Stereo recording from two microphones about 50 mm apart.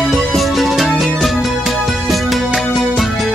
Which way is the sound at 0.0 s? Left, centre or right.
Centre.